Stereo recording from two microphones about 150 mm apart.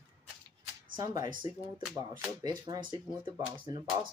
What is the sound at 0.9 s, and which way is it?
A woman's voice, 25° right (ahead or behind).